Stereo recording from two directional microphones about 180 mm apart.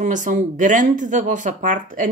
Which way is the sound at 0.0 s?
45° right (ahead or behind).